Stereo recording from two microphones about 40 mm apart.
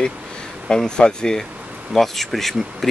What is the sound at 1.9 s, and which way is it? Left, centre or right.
Speech, centre.